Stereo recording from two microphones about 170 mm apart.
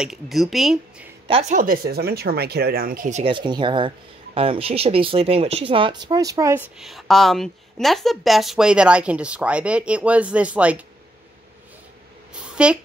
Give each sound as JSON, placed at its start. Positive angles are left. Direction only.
{"t": 0.0, "sound": "speech", "side_deg": 0}
{"t": 1.5, "sound": "speech", "side_deg": -55}
{"t": 3.2, "sound": "speech", "side_deg": -30}
{"t": 6.8, "sound": "speech", "side_deg": 0}
{"t": 12.6, "sound": "speech", "side_deg": -5}